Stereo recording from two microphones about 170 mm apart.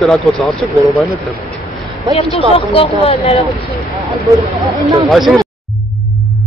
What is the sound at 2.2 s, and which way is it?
Speech, 35° left (ahead or behind).